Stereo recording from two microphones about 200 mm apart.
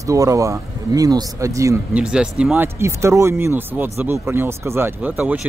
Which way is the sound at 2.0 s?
5° right (ahead or behind).